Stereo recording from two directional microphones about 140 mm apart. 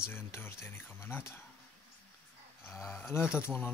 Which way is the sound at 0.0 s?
15° left (ahead or behind).